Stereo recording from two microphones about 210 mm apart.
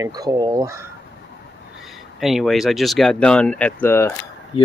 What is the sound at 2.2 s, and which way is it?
Speech, centre (ahead or behind).